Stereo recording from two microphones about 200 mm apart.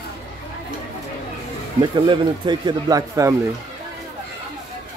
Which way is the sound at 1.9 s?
25° right (ahead or behind).